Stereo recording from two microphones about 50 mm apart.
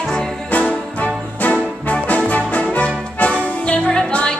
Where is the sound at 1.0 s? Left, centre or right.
Left.